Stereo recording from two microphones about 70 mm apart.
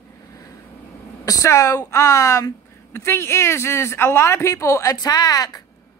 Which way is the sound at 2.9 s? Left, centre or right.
Left.